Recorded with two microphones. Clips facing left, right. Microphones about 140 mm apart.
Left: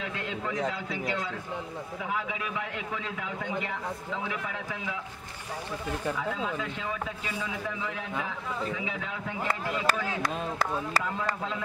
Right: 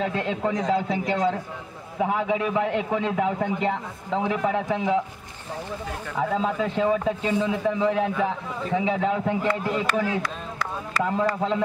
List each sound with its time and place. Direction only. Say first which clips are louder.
0.0 s a man's voice: right 9 dB; 35° right (ahead or behind)
1.1 s a man's voice: right 9 dB; 45° right (ahead or behind)
6.1 s a man's voice: right 7 dB; 35° right (ahead or behind)
10.2 s speech: left 1 dB; 35° left (ahead or behind)
11.1 s a man's voice: right 9 dB; 35° right (ahead or behind)